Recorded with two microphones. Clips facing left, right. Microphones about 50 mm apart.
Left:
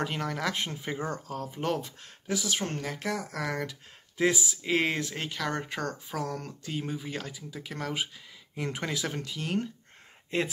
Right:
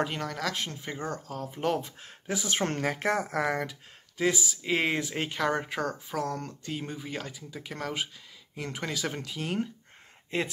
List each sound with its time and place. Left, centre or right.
0.0 s speech: centre
0.5 s speech: centre
1.8 s speech: centre
2.3 s speech: right
4.2 s speech: centre
4.6 s speech: centre
5.5 s speech: centre